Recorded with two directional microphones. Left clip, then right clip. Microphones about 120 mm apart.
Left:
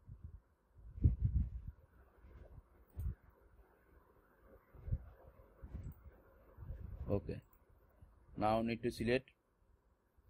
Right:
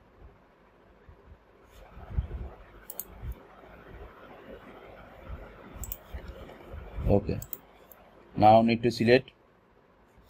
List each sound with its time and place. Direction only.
7.1 s speech: 55° left (ahead or behind)
8.4 s speech: 55° left (ahead or behind)